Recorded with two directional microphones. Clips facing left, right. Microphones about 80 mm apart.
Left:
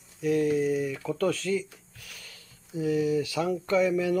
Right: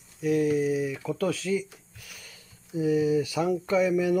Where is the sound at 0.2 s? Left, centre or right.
Centre.